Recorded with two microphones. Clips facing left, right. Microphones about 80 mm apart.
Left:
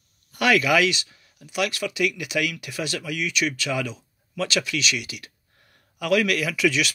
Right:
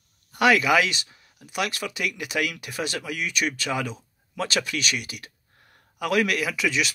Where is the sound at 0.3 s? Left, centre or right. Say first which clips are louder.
Right 1 dB; right.